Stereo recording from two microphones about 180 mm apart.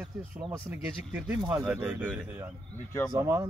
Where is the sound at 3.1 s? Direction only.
15° right (ahead or behind).